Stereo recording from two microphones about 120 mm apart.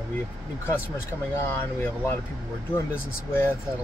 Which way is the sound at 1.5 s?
20° left (ahead or behind).